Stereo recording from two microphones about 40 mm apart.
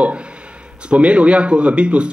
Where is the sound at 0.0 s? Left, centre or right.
Right.